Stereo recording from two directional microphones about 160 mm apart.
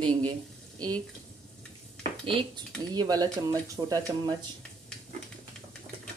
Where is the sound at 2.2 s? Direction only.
30° right (ahead or behind).